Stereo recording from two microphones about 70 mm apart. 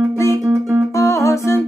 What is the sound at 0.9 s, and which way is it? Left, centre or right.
Music, left.